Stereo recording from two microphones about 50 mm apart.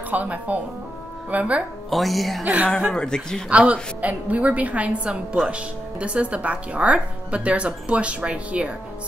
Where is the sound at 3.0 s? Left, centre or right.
Centre.